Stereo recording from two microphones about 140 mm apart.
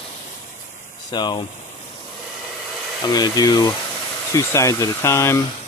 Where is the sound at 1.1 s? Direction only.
30° left (ahead or behind).